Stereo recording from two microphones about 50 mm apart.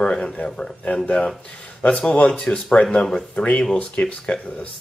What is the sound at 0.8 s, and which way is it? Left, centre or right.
Speech, left.